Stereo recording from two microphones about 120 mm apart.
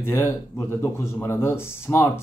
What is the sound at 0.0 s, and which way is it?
Speech, 20° left (ahead or behind).